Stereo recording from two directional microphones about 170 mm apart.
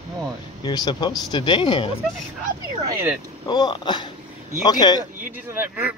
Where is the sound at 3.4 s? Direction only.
25° left (ahead or behind).